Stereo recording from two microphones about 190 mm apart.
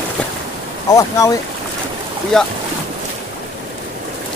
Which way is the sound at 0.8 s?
20° left (ahead or behind).